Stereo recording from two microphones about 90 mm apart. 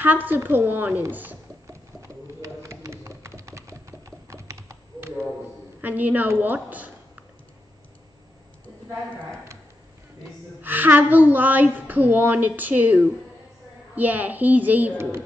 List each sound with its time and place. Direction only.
0.0 s a woman's voice: 20° right (ahead or behind)
1.7 s bird: 35° right (ahead or behind)
5.8 s a woman's voice: 20° right (ahead or behind)
10.6 s a woman's voice: 20° right (ahead or behind)